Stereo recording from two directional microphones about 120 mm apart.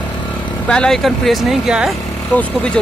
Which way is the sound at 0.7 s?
5° left (ahead or behind).